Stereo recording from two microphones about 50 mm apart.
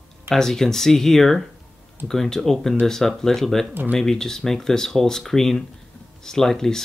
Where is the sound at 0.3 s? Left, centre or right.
Centre.